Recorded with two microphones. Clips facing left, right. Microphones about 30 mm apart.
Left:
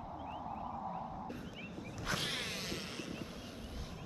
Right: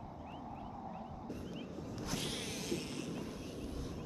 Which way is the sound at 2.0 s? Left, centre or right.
Left.